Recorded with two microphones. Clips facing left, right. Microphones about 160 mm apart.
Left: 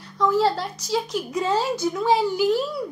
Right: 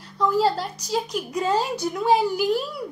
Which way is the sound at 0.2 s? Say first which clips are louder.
Left 1 dB; 5° right (ahead or behind).